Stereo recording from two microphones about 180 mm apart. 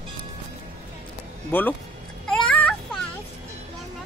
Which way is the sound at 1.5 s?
10° left (ahead or behind).